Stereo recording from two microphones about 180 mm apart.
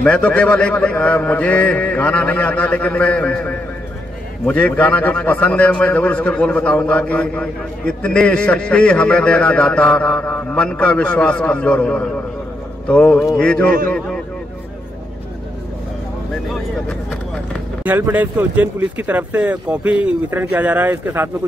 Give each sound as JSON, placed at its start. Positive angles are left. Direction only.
{"t": 0.0, "sound": "a man's voice", "side_deg": 5}
{"t": 17.8, "sound": "speech", "side_deg": -10}